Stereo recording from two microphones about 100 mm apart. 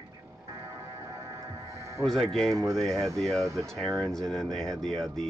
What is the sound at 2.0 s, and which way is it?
Speech, 5° left (ahead or behind).